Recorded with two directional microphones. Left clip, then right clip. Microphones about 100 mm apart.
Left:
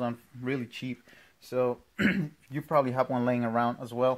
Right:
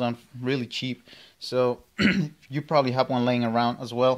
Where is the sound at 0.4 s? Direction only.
30° right (ahead or behind).